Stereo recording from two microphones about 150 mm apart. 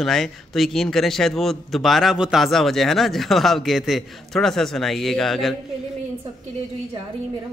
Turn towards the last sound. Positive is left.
turn(degrees=0)  # may be behind; listen again after turning